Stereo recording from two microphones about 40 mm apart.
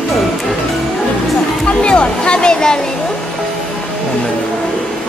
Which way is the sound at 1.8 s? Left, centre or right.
Left.